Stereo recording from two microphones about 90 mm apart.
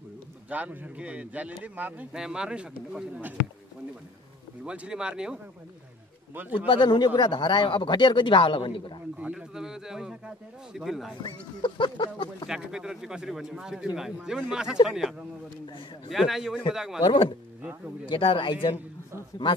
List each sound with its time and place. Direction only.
0.5 s speech: 15° right (ahead or behind)
4.6 s speech: 10° right (ahead or behind)
6.5 s speech: 65° left (ahead or behind)
9.2 s speech: 10° right (ahead or behind)
11.6 s speech: 65° left (ahead or behind)
12.4 s a man's voice: 5° right (ahead or behind)
17.0 s speech: 65° left (ahead or behind)